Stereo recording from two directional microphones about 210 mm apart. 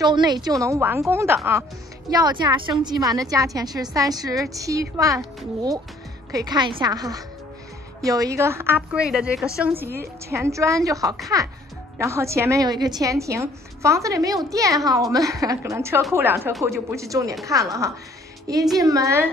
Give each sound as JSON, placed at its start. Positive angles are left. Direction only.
{"t": 0.0, "sound": "a woman's voice", "side_deg": -20}